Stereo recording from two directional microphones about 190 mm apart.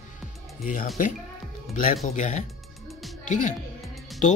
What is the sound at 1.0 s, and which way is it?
Speech, 45° left (ahead or behind).